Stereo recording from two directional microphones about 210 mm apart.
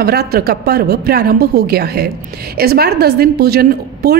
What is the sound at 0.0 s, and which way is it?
A woman's voice, 50° right (ahead or behind).